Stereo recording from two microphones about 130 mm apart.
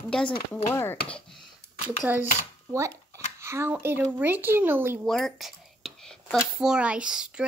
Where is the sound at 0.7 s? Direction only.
20° left (ahead or behind).